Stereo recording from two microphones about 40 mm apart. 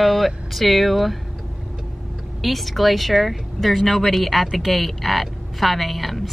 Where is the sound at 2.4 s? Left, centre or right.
Centre.